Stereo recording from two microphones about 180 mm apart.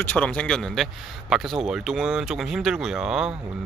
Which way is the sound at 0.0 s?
10° left (ahead or behind).